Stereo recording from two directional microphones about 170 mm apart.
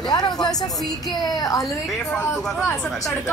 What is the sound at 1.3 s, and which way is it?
Speech, 20° left (ahead or behind).